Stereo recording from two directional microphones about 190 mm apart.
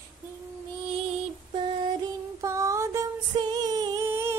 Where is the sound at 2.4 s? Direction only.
15° right (ahead or behind).